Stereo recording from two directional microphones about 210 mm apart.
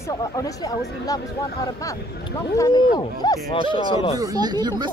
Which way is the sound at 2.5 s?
20° left (ahead or behind).